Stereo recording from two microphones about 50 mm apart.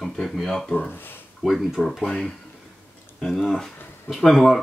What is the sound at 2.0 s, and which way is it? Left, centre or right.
Speech, centre.